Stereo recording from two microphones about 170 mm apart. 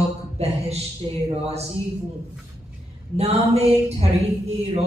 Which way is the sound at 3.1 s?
40° right (ahead or behind).